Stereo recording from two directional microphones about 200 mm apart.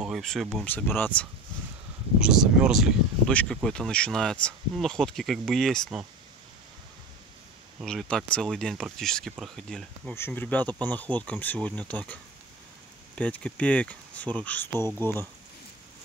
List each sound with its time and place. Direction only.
0.0 s speech: centre (ahead or behind)
2.1 s speech: 5° right (ahead or behind)
7.8 s speech: 5° left (ahead or behind)
13.1 s speech: 5° left (ahead or behind)